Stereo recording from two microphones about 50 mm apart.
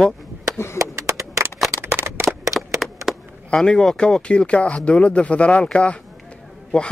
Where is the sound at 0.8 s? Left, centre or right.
Right.